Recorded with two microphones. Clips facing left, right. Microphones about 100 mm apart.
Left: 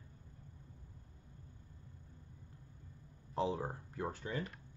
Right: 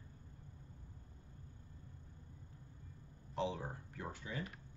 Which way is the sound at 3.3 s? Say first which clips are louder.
Left 4 dB; 35° left (ahead or behind).